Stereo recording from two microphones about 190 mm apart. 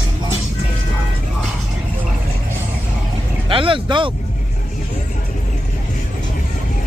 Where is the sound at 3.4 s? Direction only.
25° right (ahead or behind).